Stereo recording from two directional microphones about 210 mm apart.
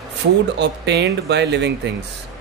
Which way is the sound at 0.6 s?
55° right (ahead or behind).